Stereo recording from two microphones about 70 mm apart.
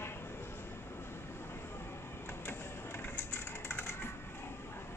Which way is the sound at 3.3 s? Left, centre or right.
Left.